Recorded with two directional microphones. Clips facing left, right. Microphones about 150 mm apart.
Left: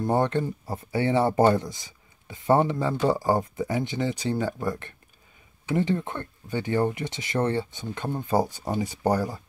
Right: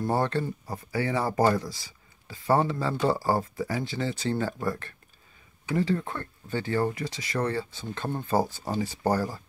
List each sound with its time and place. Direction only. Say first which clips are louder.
0.0 s speech: left 3 dB; 20° left (ahead or behind)
7.9 s speech: left 2 dB; 15° left (ahead or behind)